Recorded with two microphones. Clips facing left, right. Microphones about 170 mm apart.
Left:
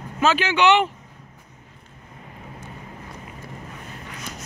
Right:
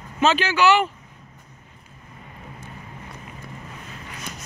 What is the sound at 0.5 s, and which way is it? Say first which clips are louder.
Speech: left 2 dB; 20° left (ahead or behind).